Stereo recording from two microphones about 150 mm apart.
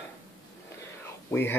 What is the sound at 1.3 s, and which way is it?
Speech, 15° left (ahead or behind).